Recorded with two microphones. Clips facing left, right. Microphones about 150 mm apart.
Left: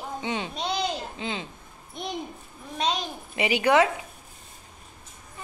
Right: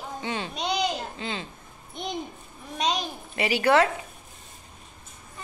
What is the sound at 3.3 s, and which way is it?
Speech, 15° left (ahead or behind).